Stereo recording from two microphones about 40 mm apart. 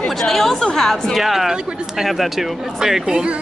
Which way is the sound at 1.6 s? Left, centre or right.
Right.